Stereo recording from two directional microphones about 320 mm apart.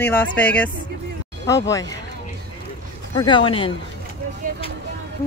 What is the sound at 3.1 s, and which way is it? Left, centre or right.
Speech, centre.